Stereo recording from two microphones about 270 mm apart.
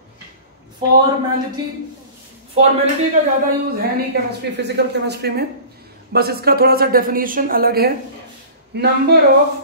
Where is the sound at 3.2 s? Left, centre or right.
Right.